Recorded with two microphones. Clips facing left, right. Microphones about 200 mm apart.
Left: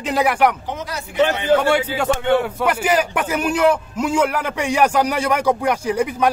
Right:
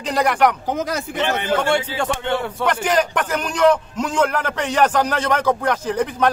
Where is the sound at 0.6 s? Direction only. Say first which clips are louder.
Right 5 dB; 45° right (ahead or behind).